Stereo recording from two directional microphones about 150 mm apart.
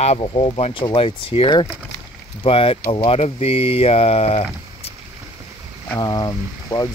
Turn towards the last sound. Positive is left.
turn(degrees=25)  # may be behind; listen again after turning